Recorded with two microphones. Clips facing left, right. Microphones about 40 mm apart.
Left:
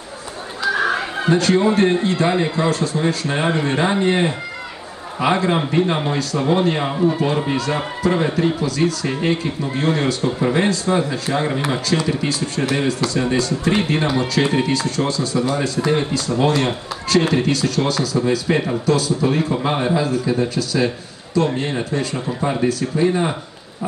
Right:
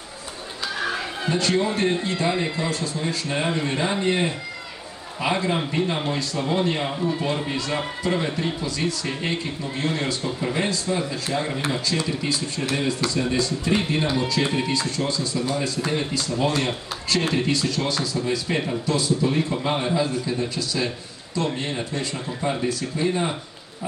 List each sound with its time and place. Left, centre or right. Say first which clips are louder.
0.7 s speech: left 8 dB; left
9.8 s speech: left 6 dB; left
19.7 s speech: left 3 dB; left